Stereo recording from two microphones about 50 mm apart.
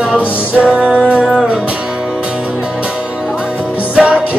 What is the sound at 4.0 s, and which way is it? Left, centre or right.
Music, right.